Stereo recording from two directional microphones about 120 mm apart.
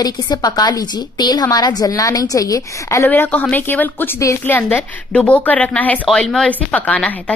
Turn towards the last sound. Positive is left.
turn(degrees=10)  # may be behind; listen again after turning